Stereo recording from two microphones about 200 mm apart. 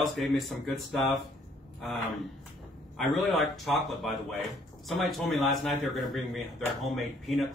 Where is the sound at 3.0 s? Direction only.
Centre (ahead or behind).